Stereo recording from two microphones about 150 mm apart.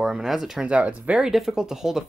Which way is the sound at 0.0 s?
5° right (ahead or behind).